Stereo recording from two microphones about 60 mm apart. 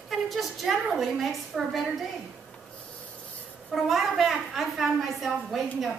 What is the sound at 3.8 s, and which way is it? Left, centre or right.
A woman's voice, centre.